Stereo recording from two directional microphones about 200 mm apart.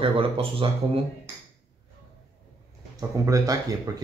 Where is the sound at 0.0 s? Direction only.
25° right (ahead or behind).